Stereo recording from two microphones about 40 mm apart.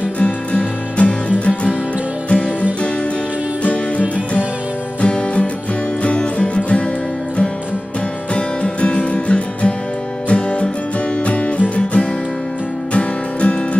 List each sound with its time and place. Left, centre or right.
0.2 s music: left
2.2 s music: left
3.6 s music: left
5.0 s music: left
8.4 s music: left